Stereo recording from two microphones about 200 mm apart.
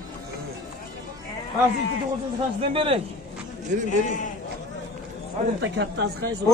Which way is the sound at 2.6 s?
30° right (ahead or behind).